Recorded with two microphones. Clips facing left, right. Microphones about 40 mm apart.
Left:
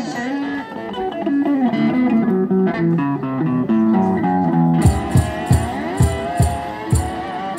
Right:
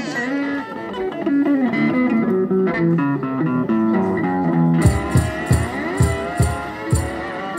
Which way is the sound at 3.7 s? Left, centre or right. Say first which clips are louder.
Left 3 dB; centre.